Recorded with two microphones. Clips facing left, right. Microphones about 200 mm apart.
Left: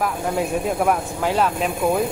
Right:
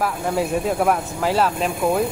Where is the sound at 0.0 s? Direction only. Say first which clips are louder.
Right 1 dB; centre (ahead or behind).